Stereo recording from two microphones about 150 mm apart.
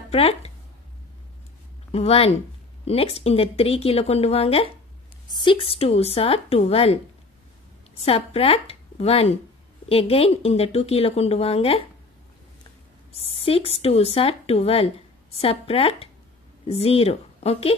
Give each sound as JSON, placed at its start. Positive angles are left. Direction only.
{"t": 0.1, "sound": "a woman's voice", "side_deg": 40}
{"t": 1.9, "sound": "a woman's voice", "side_deg": 40}
{"t": 8.0, "sound": "a woman's voice", "side_deg": 40}
{"t": 13.3, "sound": "a woman's voice", "side_deg": 40}